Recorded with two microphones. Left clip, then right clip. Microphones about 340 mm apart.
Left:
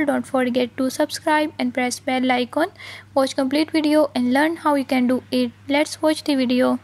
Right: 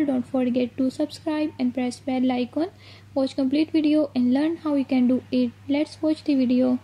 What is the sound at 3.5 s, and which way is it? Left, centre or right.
A woman's voice, centre.